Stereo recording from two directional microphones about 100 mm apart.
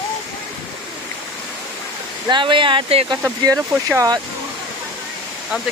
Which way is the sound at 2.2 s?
55° right (ahead or behind).